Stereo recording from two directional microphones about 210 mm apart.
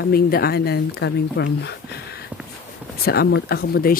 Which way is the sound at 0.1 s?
45° left (ahead or behind).